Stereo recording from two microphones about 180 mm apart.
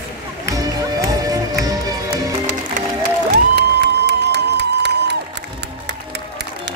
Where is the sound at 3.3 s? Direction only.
65° right (ahead or behind).